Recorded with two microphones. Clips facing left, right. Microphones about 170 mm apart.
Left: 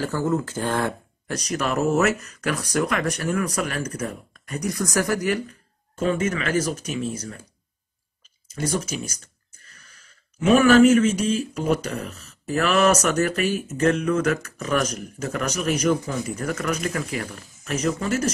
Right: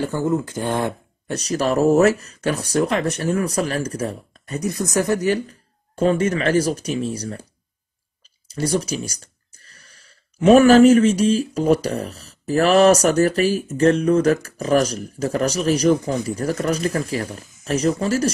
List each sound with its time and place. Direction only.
0.0 s speech: 20° right (ahead or behind)
8.5 s speech: 35° right (ahead or behind)